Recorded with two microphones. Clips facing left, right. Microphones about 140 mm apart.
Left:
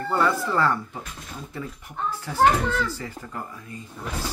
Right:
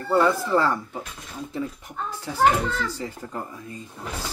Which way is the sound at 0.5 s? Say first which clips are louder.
Right 2 dB; 15° right (ahead or behind).